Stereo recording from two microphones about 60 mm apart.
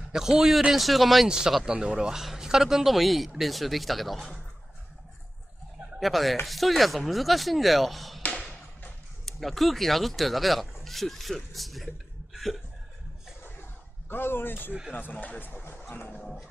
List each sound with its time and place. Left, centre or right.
0.1 s speech: centre
5.9 s speech: centre
9.2 s speech: centre
12.4 s chuckle: centre
14.0 s speech: left
16.2 s speech: centre